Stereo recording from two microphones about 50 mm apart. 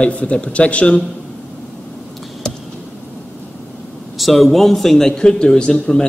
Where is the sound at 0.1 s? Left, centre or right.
Left.